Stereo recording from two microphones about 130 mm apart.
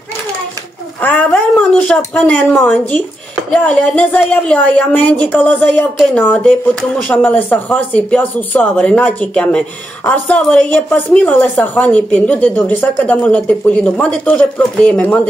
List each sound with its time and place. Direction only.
1.0 s speech: 10° left (ahead or behind)